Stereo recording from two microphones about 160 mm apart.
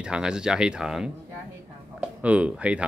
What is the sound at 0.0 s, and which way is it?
Speech, 5° right (ahead or behind).